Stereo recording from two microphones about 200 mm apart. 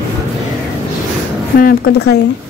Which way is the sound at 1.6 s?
45° left (ahead or behind).